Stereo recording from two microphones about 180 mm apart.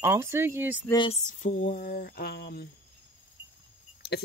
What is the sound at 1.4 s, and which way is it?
Speech, 45° left (ahead or behind).